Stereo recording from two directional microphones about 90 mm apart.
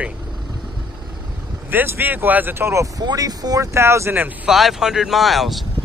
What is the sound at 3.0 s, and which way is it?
Speech, 45° right (ahead or behind).